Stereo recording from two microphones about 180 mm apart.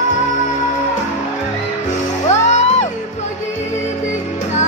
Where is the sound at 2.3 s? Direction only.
40° left (ahead or behind).